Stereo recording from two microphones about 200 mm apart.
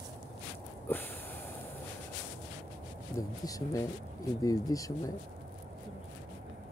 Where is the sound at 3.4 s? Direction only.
15° left (ahead or behind).